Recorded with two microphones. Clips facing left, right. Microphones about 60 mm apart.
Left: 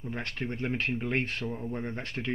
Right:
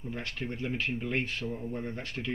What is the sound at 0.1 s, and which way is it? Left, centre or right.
Speech, left.